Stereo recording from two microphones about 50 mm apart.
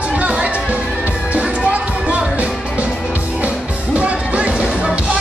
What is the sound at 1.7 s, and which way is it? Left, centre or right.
Music, right.